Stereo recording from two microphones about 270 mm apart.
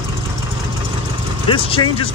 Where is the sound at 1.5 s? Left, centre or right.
Centre.